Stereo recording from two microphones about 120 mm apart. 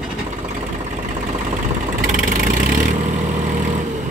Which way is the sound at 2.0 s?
90° right.